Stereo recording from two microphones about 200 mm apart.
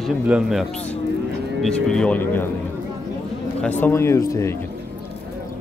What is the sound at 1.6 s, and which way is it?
Speech, 5° left (ahead or behind).